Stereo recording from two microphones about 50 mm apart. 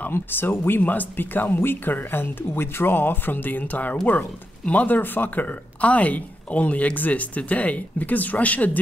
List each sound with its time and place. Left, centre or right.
0.0 s speech: left